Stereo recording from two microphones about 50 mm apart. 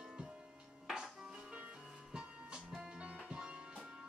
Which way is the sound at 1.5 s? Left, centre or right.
Right.